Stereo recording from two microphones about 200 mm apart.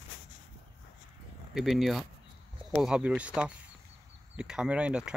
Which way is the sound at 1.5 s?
Centre (ahead or behind).